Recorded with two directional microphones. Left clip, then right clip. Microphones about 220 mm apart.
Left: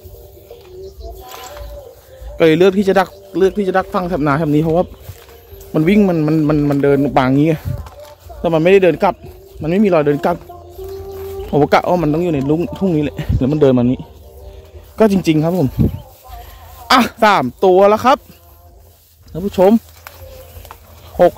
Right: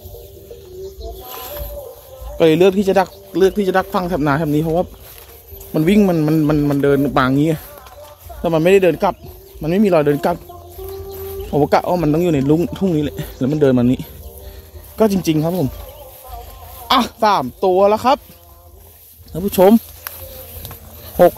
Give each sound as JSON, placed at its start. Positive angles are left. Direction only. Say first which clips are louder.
{"t": 2.3, "sound": "a man's voice", "louder": "left 1 dB", "side_deg": 5}
{"t": 3.3, "sound": "speech", "louder": "even", "side_deg": 0}
{"t": 5.7, "sound": "a man's voice", "louder": "left 1 dB", "side_deg": 5}
{"t": 11.5, "sound": "a man's voice", "louder": "left 2 dB", "side_deg": 15}
{"t": 12.0, "sound": "speech", "louder": "even", "side_deg": -10}
{"t": 12.7, "sound": "a man's voice", "louder": "left 2 dB", "side_deg": 5}
{"t": 15.0, "sound": "a man's voice", "louder": "left 3 dB", "side_deg": 15}
{"t": 16.8, "sound": "speech", "louder": "left 3 dB", "side_deg": 25}
{"t": 19.3, "sound": "speech", "louder": "even", "side_deg": -5}
{"t": 21.2, "sound": "speech", "louder": "even", "side_deg": -10}